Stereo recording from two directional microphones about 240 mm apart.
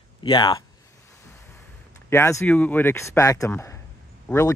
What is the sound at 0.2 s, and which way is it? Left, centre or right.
Speech, left.